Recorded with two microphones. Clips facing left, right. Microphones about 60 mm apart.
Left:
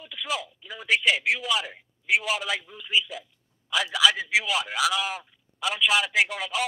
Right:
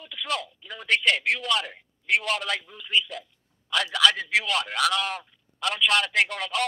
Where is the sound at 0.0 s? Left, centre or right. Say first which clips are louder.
Right 1 dB; centre.